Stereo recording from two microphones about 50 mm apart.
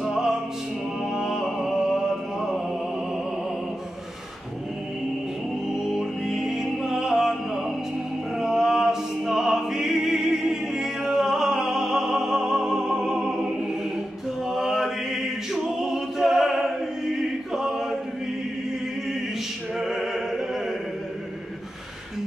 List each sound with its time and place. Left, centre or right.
0.0 s music: centre
5.9 s music: centre
8.4 s opera: centre
14.5 s music: centre
19.8 s opera: centre